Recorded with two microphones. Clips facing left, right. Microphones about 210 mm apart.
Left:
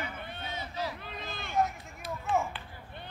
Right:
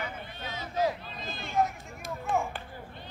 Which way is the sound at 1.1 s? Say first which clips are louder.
Right 1 dB; 60° left (ahead or behind).